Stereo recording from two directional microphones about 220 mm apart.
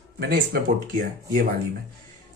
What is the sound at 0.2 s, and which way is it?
A man's voice, 45° right (ahead or behind).